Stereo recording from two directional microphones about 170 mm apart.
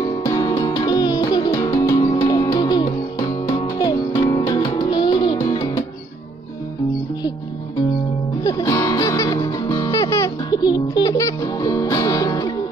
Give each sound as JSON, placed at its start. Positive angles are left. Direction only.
{"t": 0.0, "sound": "music", "side_deg": 20}
{"t": 8.5, "sound": "music", "side_deg": 20}